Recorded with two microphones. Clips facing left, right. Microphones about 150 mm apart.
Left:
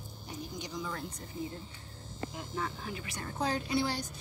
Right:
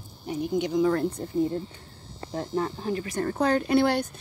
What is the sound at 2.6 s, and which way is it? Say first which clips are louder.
Speech: right 10 dB; 40° right (ahead or behind).